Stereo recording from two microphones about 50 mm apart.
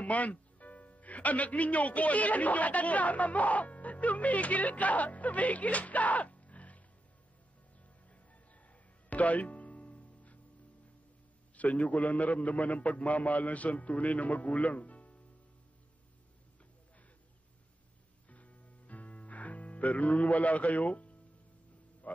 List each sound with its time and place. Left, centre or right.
0.0 s a man's voice: left
8.6 s music: left
11.5 s a man's voice: left
18.3 s music: left
22.0 s a sound: left